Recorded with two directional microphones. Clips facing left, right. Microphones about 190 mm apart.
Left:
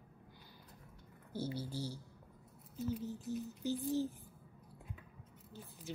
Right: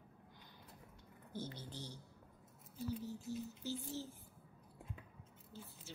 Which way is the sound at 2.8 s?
20° left (ahead or behind).